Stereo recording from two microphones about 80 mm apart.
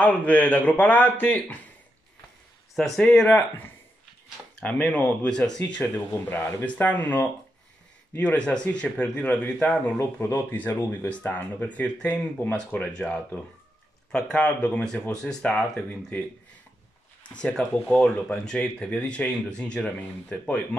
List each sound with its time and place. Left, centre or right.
0.0 s a man's voice: centre
2.7 s speech: centre
3.3 s a man's voice: left
9.9 s a man's voice: left
11.1 s speech: centre
15.9 s a man's voice: left
17.3 s speech: centre